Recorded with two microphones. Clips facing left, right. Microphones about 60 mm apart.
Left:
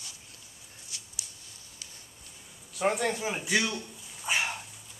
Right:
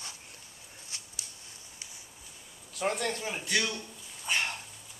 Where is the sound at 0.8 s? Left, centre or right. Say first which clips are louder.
Even; right.